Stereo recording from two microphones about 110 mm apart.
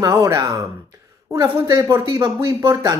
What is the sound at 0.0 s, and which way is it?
Speech, 30° right (ahead or behind).